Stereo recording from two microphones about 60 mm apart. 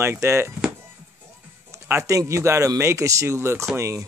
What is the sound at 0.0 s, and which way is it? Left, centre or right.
Speech, right.